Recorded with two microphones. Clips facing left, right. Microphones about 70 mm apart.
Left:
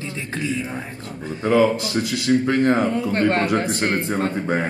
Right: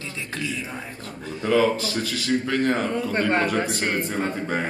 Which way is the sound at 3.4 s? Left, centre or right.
Centre.